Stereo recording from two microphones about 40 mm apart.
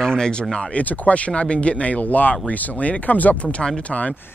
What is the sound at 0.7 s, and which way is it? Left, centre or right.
Speech, left.